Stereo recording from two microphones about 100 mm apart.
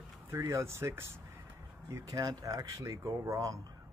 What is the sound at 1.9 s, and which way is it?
Speech, 35° right (ahead or behind).